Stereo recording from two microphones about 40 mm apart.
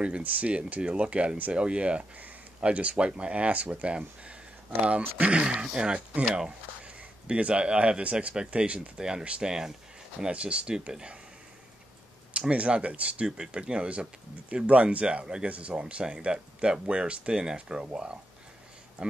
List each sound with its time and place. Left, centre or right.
0.2 s speech: right
8.9 s speech: right
10.3 s speech: right
12.4 s speech: right
19.0 s speech: right